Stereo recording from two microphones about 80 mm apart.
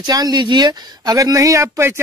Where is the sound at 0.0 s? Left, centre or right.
Right.